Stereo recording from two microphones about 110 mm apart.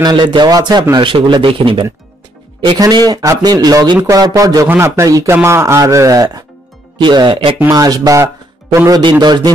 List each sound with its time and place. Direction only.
0.0 s speech: 40° right (ahead or behind)
3.1 s speech: 35° right (ahead or behind)
4.6 s a man's voice: 20° right (ahead or behind)
7.0 s speech: 45° right (ahead or behind)
7.7 s a man's voice: 35° right (ahead or behind)
9.2 s speech: 40° right (ahead or behind)